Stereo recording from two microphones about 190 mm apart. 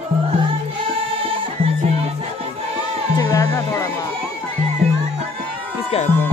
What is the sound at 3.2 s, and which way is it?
Music, 15° left (ahead or behind).